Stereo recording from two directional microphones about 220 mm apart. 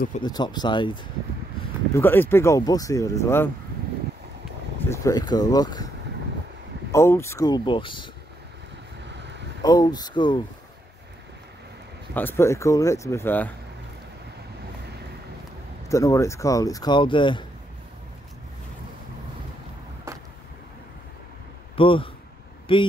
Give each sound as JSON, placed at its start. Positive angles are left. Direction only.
{"t": 0.2, "sound": "speech", "side_deg": 20}
{"t": 2.0, "sound": "speech", "side_deg": 10}
{"t": 4.8, "sound": "speech", "side_deg": 15}
{"t": 6.9, "sound": "speech", "side_deg": 10}
{"t": 9.0, "sound": "vehicle", "side_deg": -55}
{"t": 9.6, "sound": "speech", "side_deg": 15}
{"t": 12.1, "sound": "speech", "side_deg": 10}
{"t": 15.9, "sound": "speech", "side_deg": 15}
{"t": 20.1, "sound": "vehicle", "side_deg": -15}
{"t": 21.7, "sound": "speech", "side_deg": 25}